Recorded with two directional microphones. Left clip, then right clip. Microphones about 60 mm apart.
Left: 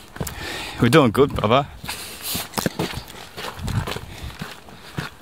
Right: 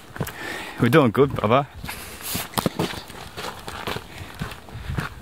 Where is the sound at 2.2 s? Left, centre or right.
Centre.